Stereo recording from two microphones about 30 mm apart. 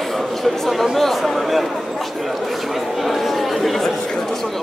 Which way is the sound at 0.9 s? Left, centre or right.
Centre.